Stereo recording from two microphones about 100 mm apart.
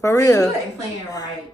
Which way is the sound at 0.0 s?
30° left (ahead or behind).